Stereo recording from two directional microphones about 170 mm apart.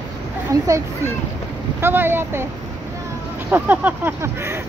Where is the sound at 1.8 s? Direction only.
10° right (ahead or behind).